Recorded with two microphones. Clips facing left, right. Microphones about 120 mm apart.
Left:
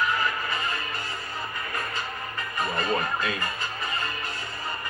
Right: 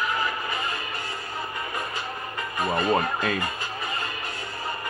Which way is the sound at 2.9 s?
50° right (ahead or behind).